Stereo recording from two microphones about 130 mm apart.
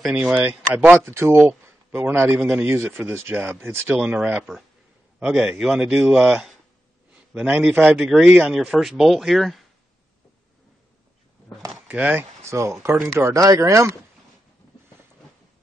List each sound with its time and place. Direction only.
0.0 s speech: 5° right (ahead or behind)
11.7 s speech: 10° right (ahead or behind)